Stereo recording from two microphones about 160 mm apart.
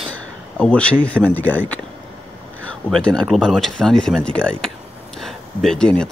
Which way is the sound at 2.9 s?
5° left (ahead or behind).